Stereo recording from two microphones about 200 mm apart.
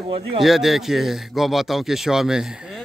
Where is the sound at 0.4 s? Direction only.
Centre (ahead or behind).